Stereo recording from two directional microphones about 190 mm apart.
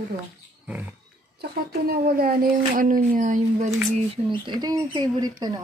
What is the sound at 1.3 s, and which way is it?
Speech, 55° right (ahead or behind).